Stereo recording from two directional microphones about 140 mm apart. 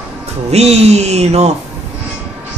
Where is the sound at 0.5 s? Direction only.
50° right (ahead or behind).